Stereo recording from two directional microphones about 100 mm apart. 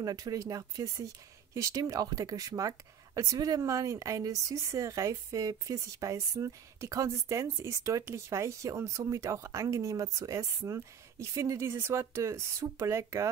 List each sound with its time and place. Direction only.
0.0 s speech: 40° right (ahead or behind)